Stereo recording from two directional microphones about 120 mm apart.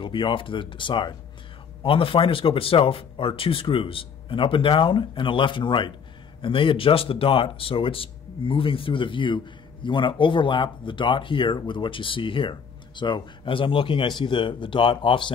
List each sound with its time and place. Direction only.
0.0 s speech: 45° left (ahead or behind)